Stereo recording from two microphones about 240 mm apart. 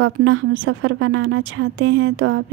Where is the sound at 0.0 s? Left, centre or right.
Right.